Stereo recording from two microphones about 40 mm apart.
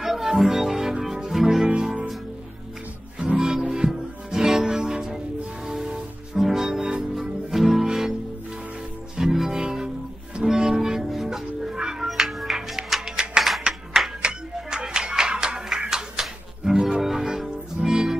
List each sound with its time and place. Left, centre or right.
0.0 s music: centre
3.2 s music: centre
9.1 s music: centre
12.1 s music: centre
13.7 s music: right